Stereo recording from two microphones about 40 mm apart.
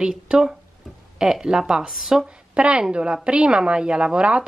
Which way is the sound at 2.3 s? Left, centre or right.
Right.